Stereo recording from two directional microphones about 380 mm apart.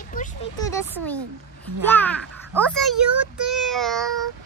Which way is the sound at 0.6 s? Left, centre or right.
Centre.